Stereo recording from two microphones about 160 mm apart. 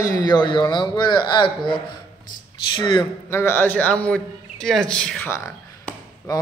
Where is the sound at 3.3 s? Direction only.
15° left (ahead or behind).